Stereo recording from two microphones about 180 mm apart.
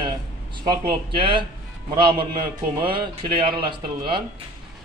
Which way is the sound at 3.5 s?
25° right (ahead or behind).